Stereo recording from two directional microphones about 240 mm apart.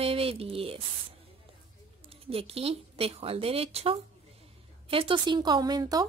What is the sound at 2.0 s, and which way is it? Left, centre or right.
Speech, right.